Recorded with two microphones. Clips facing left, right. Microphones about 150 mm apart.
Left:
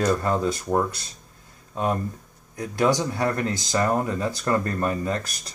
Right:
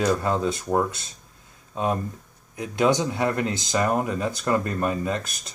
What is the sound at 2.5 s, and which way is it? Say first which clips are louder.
Speech: right 1 dB; 20° right (ahead or behind).